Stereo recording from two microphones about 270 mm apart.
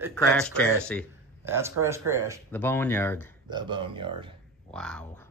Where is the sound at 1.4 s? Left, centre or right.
Centre.